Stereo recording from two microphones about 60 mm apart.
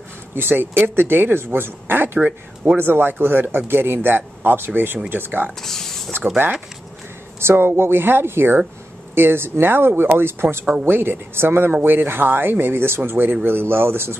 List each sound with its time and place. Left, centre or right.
0.3 s speech: right
2.1 s speech: right
2.8 s speech: right
5.6 s a sound: centre
6.2 s speech: right
7.3 s speech: right
10.6 s speech: centre
10.9 s speech: right